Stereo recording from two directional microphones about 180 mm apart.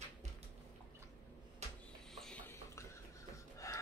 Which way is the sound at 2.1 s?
5° left (ahead or behind).